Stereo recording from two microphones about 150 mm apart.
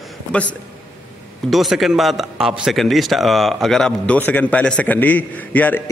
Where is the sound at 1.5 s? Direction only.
Centre (ahead or behind).